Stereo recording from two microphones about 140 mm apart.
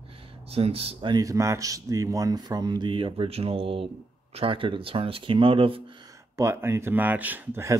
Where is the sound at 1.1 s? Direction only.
25° right (ahead or behind); by 5.8 s 40° right (ahead or behind).